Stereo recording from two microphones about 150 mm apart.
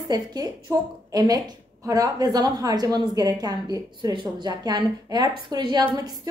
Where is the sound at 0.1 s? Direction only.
25° right (ahead or behind).